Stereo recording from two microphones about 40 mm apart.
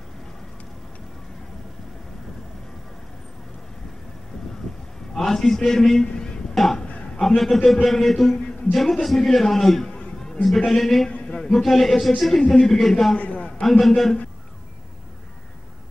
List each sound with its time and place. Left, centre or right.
5.1 s a man's voice: centre
6.5 s music: centre
7.2 s a man's voice: centre
9.8 s a sound: centre
10.7 s a man's voice: centre
13.1 s a sound: left
13.7 s a man's voice: centre